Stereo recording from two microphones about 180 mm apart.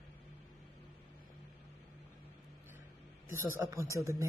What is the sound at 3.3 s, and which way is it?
Speech, 10° right (ahead or behind).